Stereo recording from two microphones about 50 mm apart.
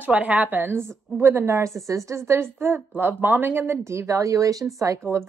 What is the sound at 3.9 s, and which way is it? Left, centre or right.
Speech, right.